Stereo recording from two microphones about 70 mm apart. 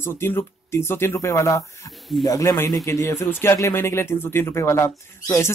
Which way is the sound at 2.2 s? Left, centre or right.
Left.